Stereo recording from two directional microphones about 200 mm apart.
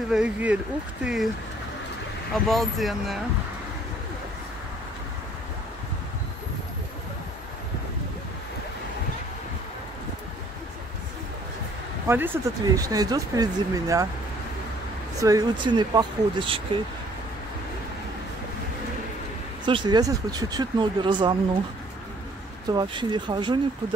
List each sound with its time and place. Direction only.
0.1 s speech: 5° right (ahead or behind)
2.5 s speech: centre (ahead or behind)
12.1 s speech: 10° right (ahead or behind)
15.1 s speech: 15° right (ahead or behind)
19.6 s speech: 25° right (ahead or behind)
22.7 s speech: 20° right (ahead or behind)